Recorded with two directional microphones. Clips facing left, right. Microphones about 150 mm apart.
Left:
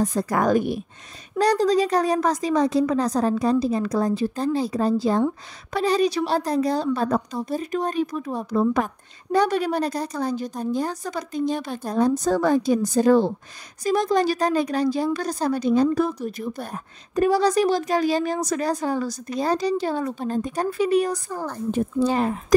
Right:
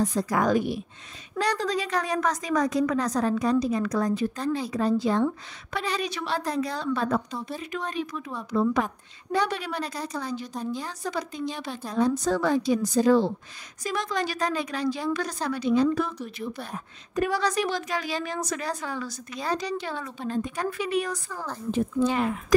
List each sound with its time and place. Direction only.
0.0 s speech: 50° left (ahead or behind)
1.4 s a woman's voice: 40° left (ahead or behind)
13.8 s a woman's voice: 40° left (ahead or behind)